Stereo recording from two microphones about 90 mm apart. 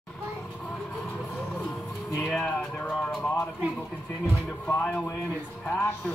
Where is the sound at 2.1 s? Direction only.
10° left (ahead or behind).